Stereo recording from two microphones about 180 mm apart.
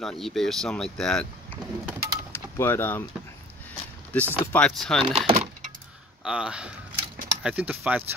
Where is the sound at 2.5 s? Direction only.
10° left (ahead or behind).